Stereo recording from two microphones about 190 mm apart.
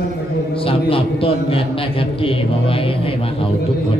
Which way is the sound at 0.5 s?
30° left (ahead or behind).